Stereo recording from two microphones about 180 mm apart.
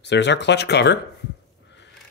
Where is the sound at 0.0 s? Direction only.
75° left (ahead or behind).